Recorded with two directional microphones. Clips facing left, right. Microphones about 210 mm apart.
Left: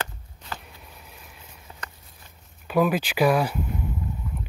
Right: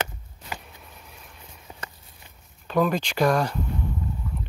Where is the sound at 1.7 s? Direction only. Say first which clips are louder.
Right 2 dB; 15° right (ahead or behind).